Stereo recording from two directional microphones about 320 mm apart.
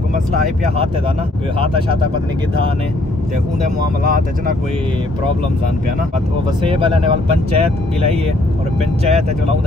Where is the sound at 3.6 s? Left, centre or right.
Right.